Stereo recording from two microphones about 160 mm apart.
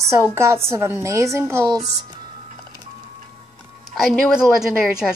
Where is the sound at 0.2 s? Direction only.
15° right (ahead or behind).